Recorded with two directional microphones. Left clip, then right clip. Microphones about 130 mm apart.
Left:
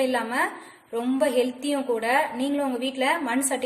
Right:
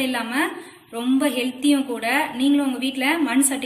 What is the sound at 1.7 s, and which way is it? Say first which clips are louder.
A woman's voice: right 3 dB; 90° left.